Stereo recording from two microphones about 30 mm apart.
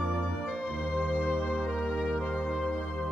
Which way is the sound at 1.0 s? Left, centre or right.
Right.